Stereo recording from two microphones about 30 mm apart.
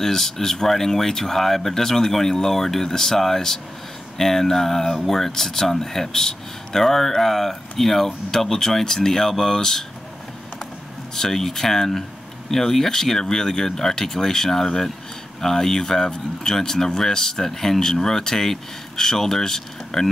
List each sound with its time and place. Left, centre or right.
0.0 s speech: centre
11.1 s speech: centre